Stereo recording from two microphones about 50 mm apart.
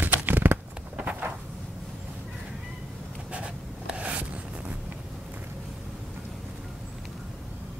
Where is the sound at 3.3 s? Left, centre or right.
Right.